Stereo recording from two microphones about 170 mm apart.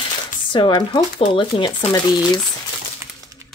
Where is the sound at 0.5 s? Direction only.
25° left (ahead or behind).